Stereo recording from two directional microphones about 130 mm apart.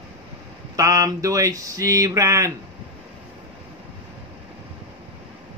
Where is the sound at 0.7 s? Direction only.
25° right (ahead or behind).